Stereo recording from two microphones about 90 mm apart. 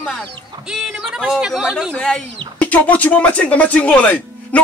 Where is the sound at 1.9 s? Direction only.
10° left (ahead or behind).